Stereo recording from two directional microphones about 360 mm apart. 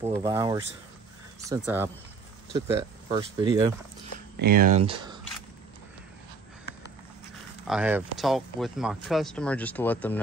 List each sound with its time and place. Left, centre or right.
0.0 s speech: centre
2.5 s speech: centre
4.4 s speech: right
7.6 s speech: centre